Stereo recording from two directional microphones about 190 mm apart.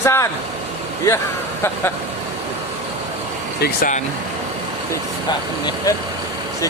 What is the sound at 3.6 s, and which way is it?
Speech, 45° left (ahead or behind).